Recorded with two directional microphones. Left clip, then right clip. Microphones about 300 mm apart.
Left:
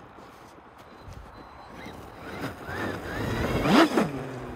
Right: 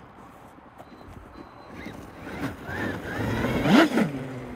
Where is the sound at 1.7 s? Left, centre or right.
Centre.